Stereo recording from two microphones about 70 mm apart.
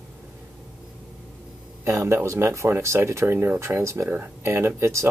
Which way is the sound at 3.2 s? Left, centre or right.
Right.